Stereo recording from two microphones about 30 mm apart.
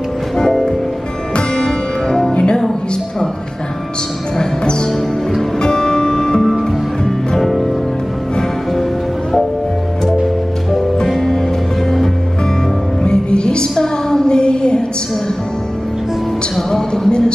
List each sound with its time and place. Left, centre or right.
1.3 s music: left
5.6 s music: left
7.3 s music: centre
11.1 s music: centre
13.0 s music: left
13.7 s a sound: left
16.7 s music: left